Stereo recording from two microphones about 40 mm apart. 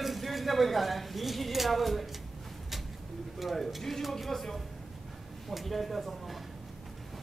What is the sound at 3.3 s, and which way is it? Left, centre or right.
A man's voice, centre.